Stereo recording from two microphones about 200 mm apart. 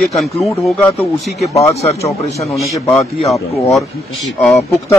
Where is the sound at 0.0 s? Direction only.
Centre (ahead or behind).